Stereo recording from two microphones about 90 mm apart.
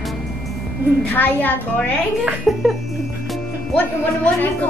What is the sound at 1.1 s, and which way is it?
Speech, 20° left (ahead or behind).